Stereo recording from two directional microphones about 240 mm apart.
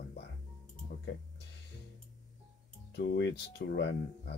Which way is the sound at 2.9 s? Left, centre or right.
Left.